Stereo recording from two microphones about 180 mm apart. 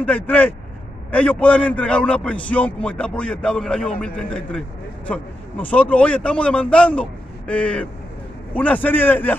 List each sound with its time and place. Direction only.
0.0 s a man's voice: 10° left (ahead or behind)